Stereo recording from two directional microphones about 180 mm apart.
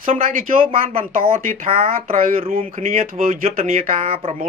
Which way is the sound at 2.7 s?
50° right (ahead or behind).